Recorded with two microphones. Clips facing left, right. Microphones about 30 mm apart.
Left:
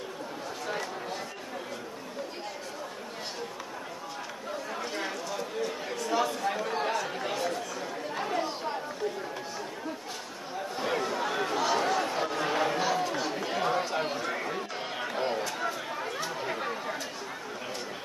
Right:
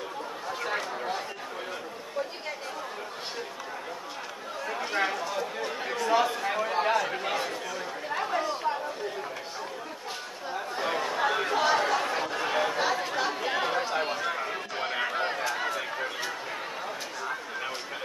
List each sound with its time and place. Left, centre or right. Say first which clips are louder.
0.7 s a sound: right 3 dB; right
4.9 s chatter: right 8 dB; right
10.8 s chatter: right 2 dB; centre
11.8 s chatter: right 1 dB; centre
14.8 s chatter: right 6 dB; right